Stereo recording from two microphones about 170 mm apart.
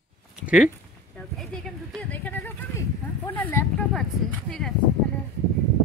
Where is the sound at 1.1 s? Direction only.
Centre (ahead or behind).